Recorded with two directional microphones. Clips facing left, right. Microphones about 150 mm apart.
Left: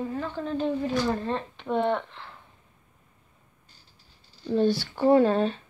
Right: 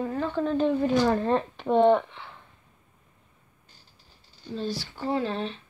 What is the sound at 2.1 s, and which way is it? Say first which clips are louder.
Speech: even; centre (ahead or behind).